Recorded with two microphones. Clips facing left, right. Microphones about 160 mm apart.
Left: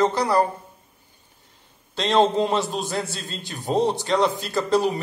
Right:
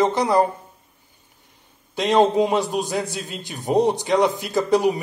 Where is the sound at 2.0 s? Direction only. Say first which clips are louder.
Right 2 dB; 15° right (ahead or behind).